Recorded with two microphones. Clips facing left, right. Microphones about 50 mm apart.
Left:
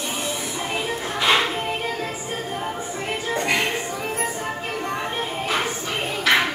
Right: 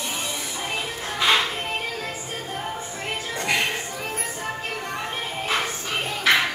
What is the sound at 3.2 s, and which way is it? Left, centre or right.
Music, left.